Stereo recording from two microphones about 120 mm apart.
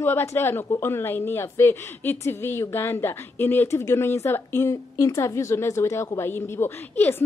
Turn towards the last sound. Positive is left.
turn(degrees=15)  # may be behind; listen again after turning